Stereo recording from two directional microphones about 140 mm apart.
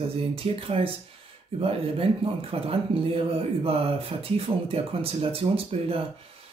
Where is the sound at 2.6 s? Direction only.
40° right (ahead or behind).